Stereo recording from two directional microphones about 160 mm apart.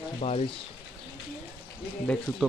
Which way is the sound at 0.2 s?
40° left (ahead or behind).